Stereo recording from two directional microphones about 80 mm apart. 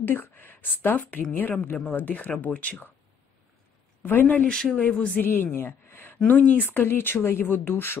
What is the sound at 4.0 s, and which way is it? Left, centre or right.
A woman's voice, left.